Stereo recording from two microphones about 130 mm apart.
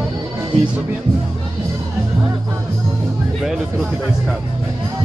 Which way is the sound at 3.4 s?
Centre (ahead or behind).